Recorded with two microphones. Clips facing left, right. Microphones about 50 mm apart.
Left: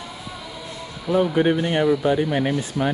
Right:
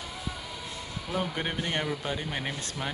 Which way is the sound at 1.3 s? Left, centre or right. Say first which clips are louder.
Left 12 dB; centre.